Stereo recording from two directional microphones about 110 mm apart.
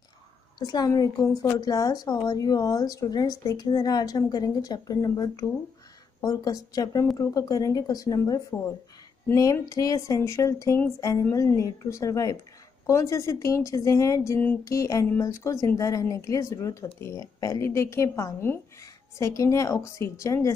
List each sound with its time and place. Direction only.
0.6 s a woman's voice: 40° left (ahead or behind)